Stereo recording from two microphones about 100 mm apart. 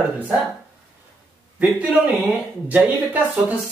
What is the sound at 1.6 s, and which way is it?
A man's voice, 15° right (ahead or behind).